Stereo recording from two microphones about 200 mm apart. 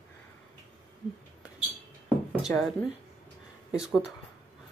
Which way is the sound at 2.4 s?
Centre (ahead or behind).